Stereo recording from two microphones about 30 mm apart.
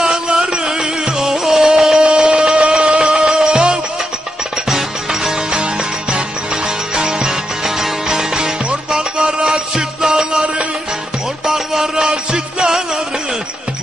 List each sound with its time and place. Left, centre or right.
0.0 s music: right
2.0 s a sound: right
3.3 s music: right
4.6 s music: centre
6.1 s music: right
7.6 s music: centre
11.4 s music: centre